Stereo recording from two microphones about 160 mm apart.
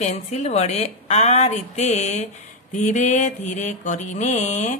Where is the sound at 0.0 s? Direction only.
45° left (ahead or behind).